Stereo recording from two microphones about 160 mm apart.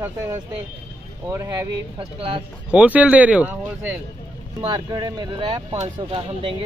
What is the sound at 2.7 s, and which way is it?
Speech, 10° right (ahead or behind).